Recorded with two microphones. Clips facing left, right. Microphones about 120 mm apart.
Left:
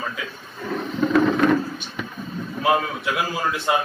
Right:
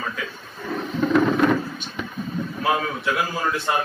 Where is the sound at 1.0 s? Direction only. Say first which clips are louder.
Left 1 dB; centre (ahead or behind).